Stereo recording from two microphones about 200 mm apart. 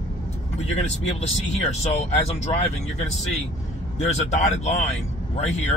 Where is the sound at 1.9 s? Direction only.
35° left (ahead or behind).